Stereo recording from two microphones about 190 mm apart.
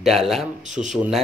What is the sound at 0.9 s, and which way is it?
Speech, centre (ahead or behind).